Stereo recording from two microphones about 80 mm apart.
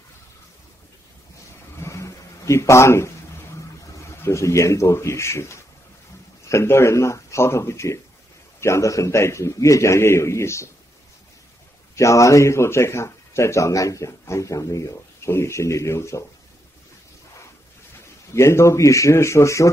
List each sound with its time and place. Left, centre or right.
1.8 s a sound: left
4.2 s a man's voice: left
11.9 s a man's voice: left
18.3 s a man's voice: left